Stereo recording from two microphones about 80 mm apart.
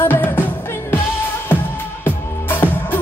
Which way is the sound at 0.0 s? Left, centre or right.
Left.